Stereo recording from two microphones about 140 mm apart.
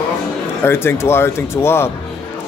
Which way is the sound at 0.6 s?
15° left (ahead or behind).